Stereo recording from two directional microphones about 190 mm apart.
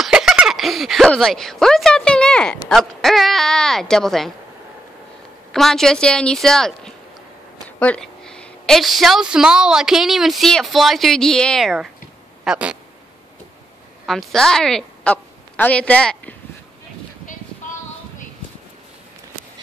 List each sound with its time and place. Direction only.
0.0 s a sound: centre (ahead or behind)
2.7 s speech: centre (ahead or behind)
5.5 s a woman's voice: centre (ahead or behind)
14.0 s speech: centre (ahead or behind)